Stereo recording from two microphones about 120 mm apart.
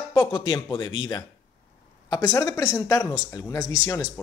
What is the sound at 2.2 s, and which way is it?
Speech, 25° left (ahead or behind).